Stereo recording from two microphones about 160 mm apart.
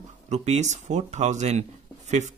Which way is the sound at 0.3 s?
45° right (ahead or behind).